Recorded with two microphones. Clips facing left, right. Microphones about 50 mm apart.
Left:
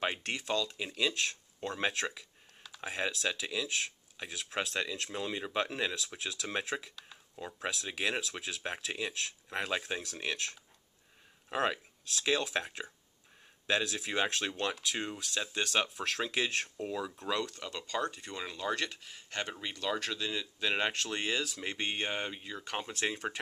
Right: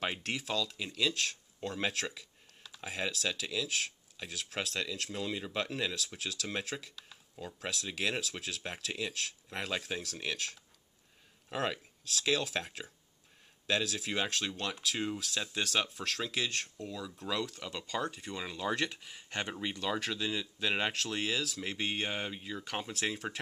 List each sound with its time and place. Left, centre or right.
0.0 s speech: centre
11.4 s speech: centre
14.8 s speech: centre; by 17.1 s left
17.1 s speech: centre